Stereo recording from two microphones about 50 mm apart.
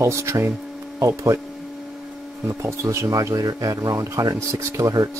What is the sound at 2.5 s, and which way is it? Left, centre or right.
Speech, right.